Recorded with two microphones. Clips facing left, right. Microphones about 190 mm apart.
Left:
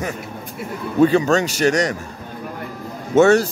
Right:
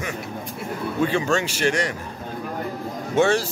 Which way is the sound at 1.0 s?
40° left (ahead or behind).